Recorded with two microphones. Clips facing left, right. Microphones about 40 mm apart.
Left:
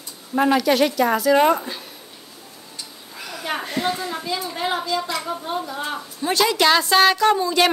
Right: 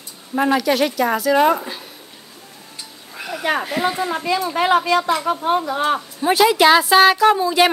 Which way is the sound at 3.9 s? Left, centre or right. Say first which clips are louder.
Right 6 dB; right.